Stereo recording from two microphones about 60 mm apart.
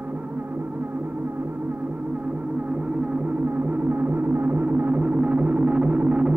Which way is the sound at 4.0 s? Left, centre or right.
Right.